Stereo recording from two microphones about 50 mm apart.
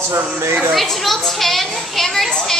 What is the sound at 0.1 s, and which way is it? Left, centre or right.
Speech, right.